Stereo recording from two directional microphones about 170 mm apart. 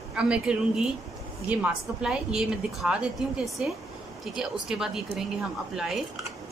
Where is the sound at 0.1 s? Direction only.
5° right (ahead or behind).